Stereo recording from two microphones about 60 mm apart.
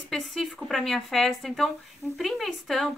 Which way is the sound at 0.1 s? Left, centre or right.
Centre.